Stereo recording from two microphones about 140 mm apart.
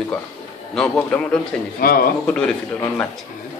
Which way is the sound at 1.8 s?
90° left.